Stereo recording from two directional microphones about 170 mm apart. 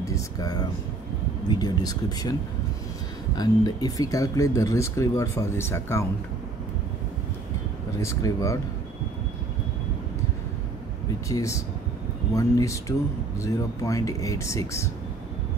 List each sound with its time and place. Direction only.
0.0 s speech: 20° left (ahead or behind)
3.3 s speech: 25° left (ahead or behind)
8.0 s speech: 20° left (ahead or behind)
11.2 s speech: 20° left (ahead or behind)